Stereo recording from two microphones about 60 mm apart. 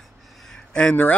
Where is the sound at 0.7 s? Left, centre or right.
Centre.